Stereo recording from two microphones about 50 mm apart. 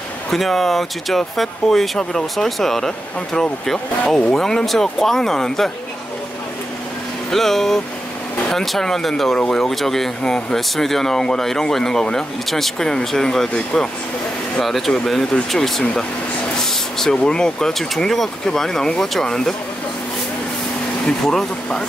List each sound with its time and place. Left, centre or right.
0.3 s speech: centre
4.1 s speech: centre
7.2 s speech: centre
15.8 s speech: left
21.2 s speech: centre